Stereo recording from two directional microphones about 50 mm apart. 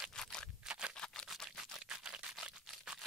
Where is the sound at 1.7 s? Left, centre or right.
Centre.